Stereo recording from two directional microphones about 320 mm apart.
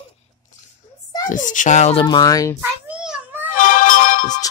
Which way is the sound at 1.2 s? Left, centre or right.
Left.